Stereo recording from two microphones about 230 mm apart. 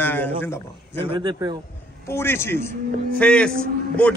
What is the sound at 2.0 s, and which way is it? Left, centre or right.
A man's voice, centre.